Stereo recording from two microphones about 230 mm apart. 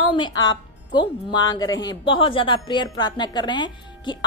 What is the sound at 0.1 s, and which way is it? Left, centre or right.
A woman's voice, centre.